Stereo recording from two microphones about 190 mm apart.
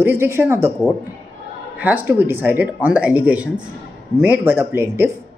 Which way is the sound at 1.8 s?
10° right (ahead or behind).